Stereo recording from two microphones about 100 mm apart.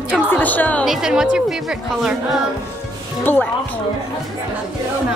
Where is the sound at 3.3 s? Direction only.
20° left (ahead or behind).